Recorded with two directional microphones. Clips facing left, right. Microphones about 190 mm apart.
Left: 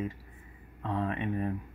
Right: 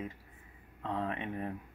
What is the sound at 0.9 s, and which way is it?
Speech, 20° right (ahead or behind).